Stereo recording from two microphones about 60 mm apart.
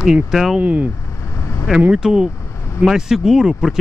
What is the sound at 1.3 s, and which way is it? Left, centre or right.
Vehicle, left.